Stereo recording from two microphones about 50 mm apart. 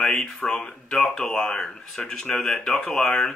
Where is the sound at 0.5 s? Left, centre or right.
Left.